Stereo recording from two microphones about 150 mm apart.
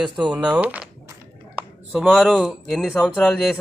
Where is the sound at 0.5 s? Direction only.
10° right (ahead or behind).